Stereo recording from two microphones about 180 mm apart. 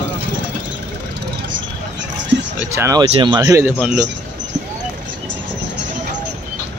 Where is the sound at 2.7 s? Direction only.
20° right (ahead or behind).